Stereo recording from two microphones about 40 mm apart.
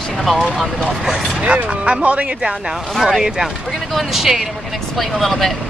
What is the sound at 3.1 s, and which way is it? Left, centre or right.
Speech, centre.